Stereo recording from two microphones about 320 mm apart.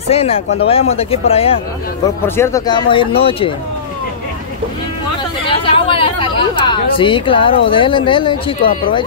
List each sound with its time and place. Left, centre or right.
0.1 s speech: centre
2.2 s speech: centre
5.5 s a woman's voice: centre